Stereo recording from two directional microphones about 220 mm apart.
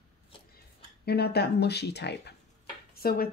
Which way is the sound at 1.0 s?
45° left (ahead or behind).